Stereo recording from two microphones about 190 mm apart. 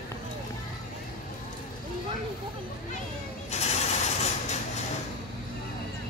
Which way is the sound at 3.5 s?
35° left (ahead or behind).